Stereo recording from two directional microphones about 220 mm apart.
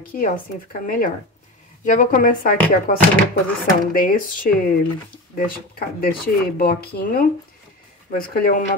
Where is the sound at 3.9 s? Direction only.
40° left (ahead or behind).